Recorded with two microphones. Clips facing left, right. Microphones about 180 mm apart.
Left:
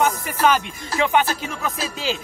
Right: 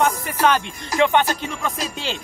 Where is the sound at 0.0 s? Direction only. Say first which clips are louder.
Even; 5° left (ahead or behind).